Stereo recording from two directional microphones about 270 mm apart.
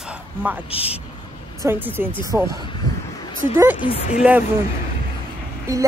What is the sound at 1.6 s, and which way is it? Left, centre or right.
Speech, centre.